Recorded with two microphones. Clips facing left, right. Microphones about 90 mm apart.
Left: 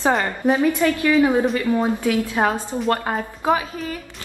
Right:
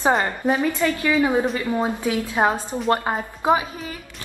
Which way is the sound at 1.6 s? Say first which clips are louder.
Left 3 dB; 15° right (ahead or behind).